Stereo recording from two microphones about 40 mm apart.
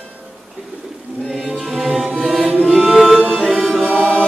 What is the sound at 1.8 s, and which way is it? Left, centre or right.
Music, centre.